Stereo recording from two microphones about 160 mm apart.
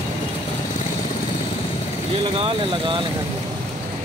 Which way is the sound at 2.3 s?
35° right (ahead or behind).